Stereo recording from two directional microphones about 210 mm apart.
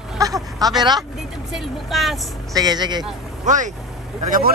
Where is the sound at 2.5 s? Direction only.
20° right (ahead or behind).